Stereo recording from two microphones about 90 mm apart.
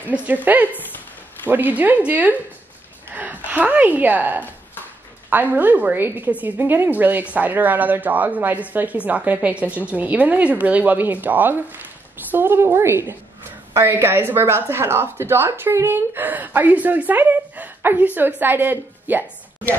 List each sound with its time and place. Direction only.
0.1 s speech: 15° right (ahead or behind)
0.7 s a sound: 20° left (ahead or behind)
1.5 s a woman's voice: 20° right (ahead or behind)